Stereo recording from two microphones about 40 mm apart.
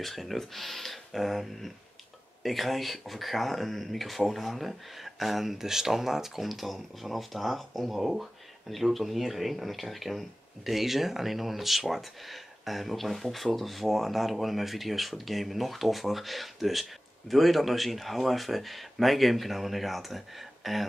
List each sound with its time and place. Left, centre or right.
0.0 s speech: centre